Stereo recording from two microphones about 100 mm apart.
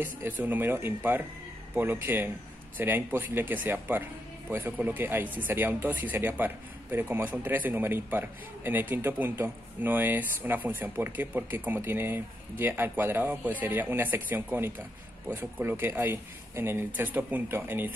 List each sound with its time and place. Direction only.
0.0 s speech: 15° right (ahead or behind)